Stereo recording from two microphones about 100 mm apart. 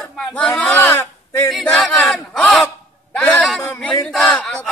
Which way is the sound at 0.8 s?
25° left (ahead or behind).